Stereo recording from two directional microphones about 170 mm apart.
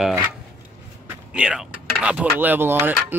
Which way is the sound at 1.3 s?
5° right (ahead or behind).